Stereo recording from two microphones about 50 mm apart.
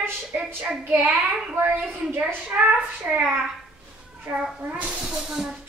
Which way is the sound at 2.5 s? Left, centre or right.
Right.